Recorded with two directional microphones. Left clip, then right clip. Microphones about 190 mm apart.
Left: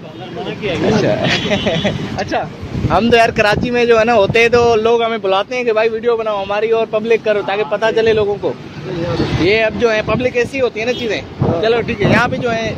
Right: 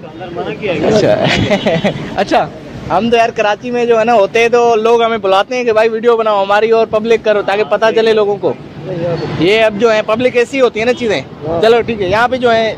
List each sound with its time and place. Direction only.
1.0 s speech: 15° right (ahead or behind)
2.9 s speech: 5° left (ahead or behind)
12.3 s speech: 25° right (ahead or behind)